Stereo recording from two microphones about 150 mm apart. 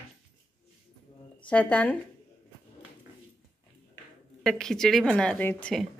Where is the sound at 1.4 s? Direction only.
10° left (ahead or behind).